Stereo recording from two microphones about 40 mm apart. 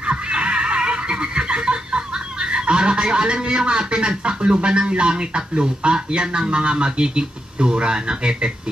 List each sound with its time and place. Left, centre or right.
0.0 s neigh: right
2.5 s a man's voice: right